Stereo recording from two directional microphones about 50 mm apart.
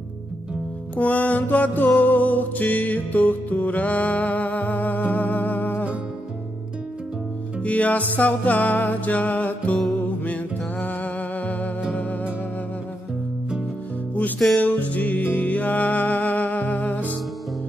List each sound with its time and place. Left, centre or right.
0.9 s music: left
7.6 s music: left
14.6 s music: left